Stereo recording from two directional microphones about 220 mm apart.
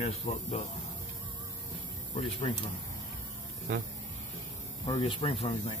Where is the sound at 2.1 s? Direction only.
25° left (ahead or behind).